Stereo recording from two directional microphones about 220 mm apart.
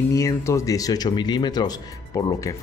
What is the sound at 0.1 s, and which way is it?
Speech, 15° left (ahead or behind).